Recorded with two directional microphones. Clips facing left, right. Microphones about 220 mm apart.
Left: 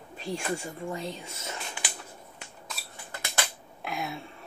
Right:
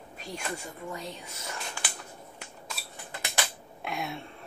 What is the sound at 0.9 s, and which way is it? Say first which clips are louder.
Speech: left 3 dB; 25° left (ahead or behind).